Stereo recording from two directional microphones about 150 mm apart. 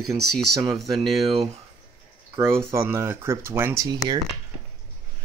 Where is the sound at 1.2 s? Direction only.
40° right (ahead or behind).